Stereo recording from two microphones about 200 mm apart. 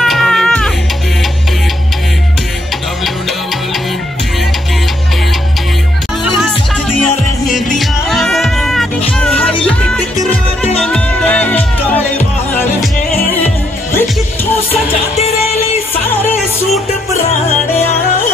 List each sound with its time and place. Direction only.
0.0 s music: centre (ahead or behind)
6.2 s music: 5° right (ahead or behind)
7.7 s music: centre (ahead or behind)
13.9 s music: 10° left (ahead or behind)
14.7 s music: 30° left (ahead or behind)
16.1 s music: 10° left (ahead or behind)